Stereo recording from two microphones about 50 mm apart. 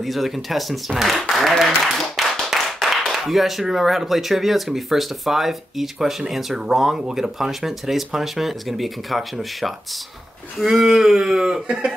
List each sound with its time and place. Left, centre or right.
0.0 s speech: centre
2.5 s clapping: centre
3.1 s speech: centre
11.6 s speech: right